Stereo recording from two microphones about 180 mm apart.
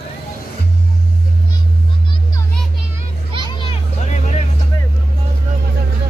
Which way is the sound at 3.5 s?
30° left (ahead or behind).